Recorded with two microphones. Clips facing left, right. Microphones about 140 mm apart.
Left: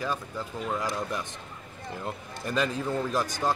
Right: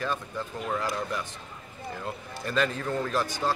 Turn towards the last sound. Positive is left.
turn(degrees=15)  # may be behind; listen again after turning